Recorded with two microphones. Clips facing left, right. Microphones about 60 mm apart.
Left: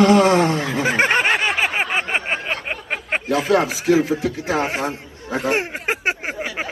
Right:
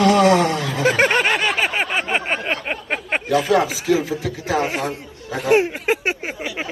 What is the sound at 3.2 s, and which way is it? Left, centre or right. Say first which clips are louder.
Speech: right 1 dB; left.